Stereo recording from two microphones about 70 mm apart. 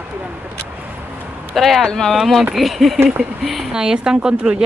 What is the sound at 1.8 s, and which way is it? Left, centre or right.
Speech, centre.